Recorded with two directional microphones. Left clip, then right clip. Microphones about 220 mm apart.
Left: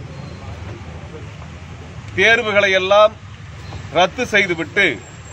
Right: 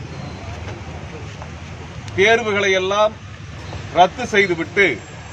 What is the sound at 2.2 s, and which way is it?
Speech, 50° left (ahead or behind).